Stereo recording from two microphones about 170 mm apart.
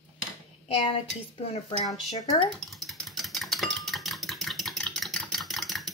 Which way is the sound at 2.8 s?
Centre (ahead or behind).